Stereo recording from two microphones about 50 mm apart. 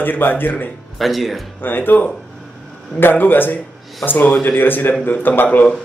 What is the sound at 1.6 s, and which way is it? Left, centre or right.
Speech, left.